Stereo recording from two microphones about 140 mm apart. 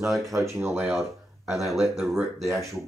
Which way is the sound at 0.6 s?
15° right (ahead or behind).